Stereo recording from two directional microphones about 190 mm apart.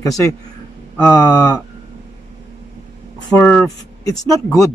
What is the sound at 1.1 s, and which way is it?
Speech, 20° left (ahead or behind).